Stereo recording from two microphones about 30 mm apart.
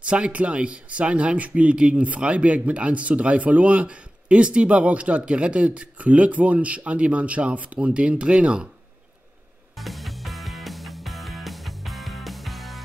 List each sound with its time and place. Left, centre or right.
0.0 s speech: right
7.8 s speech: right
9.8 s music: centre